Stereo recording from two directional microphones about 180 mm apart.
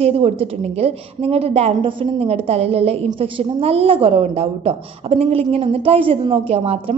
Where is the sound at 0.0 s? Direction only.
35° right (ahead or behind).